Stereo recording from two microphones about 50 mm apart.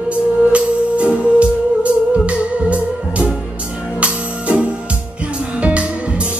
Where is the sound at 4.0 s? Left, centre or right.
Right.